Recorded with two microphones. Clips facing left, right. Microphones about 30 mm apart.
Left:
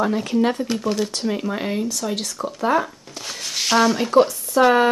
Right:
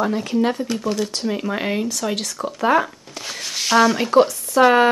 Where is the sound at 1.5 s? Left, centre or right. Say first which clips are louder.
Right 2 dB; right.